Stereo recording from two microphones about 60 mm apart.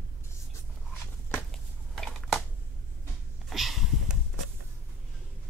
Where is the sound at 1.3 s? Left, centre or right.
Centre.